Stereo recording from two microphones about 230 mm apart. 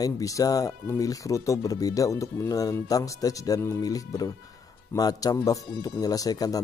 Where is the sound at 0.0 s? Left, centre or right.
Centre.